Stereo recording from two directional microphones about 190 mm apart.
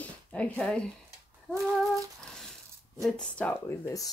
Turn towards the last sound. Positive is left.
turn(degrees=15)  # may be behind; listen again after turning